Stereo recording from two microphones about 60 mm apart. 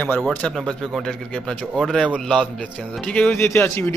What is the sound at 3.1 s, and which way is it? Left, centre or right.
Speech, left.